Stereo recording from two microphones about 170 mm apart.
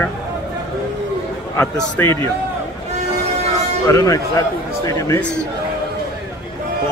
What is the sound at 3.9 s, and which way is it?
Speech, 20° left (ahead or behind).